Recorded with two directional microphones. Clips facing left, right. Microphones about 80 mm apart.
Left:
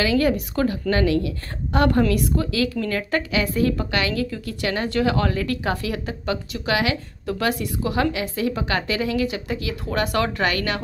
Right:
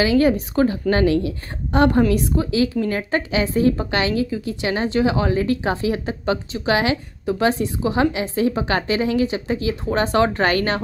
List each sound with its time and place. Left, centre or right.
0.0 s speech: right